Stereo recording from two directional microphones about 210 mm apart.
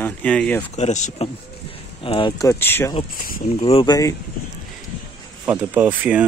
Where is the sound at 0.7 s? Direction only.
35° left (ahead or behind); by 2.9 s 10° left (ahead or behind).